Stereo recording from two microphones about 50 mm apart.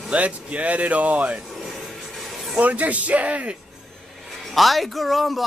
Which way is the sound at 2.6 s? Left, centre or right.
Right.